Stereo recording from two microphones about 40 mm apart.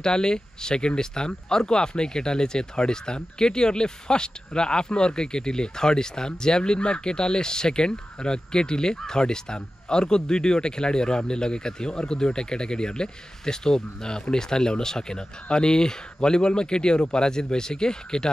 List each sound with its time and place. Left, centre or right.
0.0 s speech: centre